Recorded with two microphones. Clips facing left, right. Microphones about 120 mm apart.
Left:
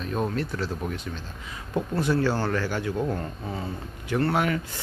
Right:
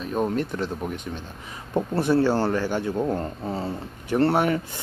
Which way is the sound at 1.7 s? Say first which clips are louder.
Right 3 dB; 25° right (ahead or behind).